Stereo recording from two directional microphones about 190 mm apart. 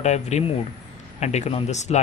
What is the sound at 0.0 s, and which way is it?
Speech, 35° left (ahead or behind).